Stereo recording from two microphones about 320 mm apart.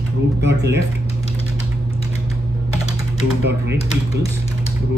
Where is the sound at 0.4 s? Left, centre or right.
Right.